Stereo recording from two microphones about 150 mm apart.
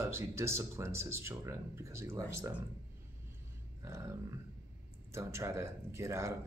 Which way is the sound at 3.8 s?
20° right (ahead or behind).